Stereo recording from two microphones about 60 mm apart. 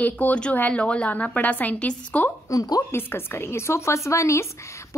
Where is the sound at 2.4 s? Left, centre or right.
Left.